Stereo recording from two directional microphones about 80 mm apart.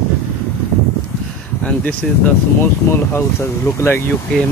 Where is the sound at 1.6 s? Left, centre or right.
Centre.